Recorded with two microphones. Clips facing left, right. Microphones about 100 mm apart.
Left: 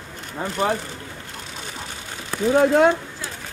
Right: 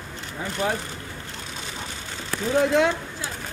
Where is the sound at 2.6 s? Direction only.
45° left (ahead or behind).